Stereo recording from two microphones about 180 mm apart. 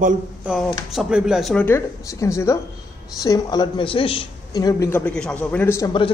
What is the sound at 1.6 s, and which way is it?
A man's voice, 15° left (ahead or behind).